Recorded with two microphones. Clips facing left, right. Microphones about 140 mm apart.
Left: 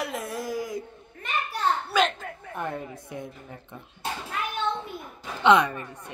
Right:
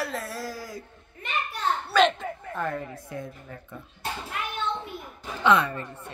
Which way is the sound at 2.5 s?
20° left (ahead or behind).